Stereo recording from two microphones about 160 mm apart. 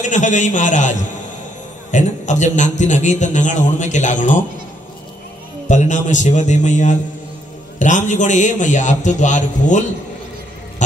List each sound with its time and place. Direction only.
0.0 s a man's voice: 50° left (ahead or behind)
5.7 s a man's voice: 50° left (ahead or behind)